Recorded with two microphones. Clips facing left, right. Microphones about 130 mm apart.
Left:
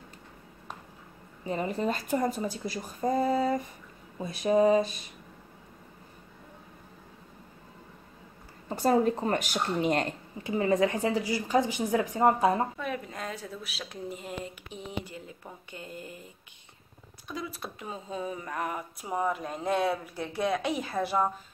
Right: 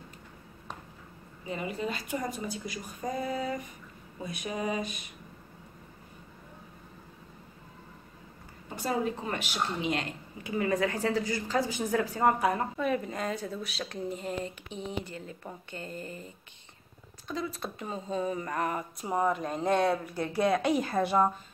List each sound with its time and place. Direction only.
1.4 s speech: 40° left (ahead or behind)
8.6 s speech: 40° left (ahead or behind)
10.4 s speech: 25° left (ahead or behind)
12.7 s speech: centre (ahead or behind)
17.3 s speech: 10° left (ahead or behind)